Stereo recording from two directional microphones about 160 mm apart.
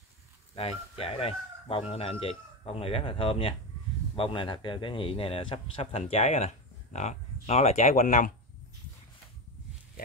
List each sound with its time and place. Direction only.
0.6 s a man's voice: 40° left (ahead or behind)